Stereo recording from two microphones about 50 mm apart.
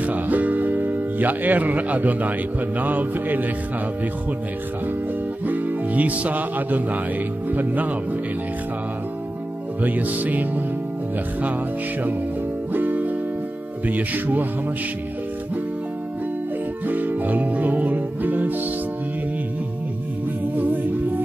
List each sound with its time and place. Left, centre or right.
0.0 s music: right
5.4 s music: right
9.8 s music: right
12.7 s music: right
16.8 s music: right
20.5 s music: right